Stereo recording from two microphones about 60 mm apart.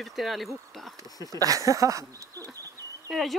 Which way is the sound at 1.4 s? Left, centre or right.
Right.